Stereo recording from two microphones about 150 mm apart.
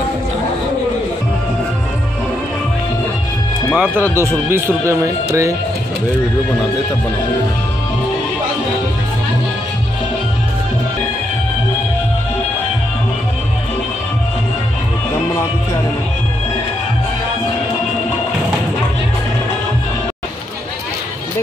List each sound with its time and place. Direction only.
3.7 s speech: 10° right (ahead or behind)